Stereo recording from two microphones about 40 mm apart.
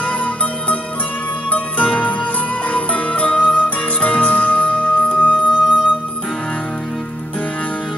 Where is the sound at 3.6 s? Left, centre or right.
Left.